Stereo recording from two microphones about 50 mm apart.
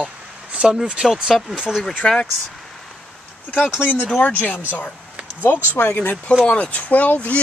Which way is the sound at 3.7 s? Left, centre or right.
Left.